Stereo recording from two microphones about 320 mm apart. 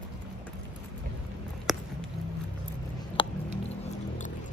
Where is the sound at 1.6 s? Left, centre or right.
Centre.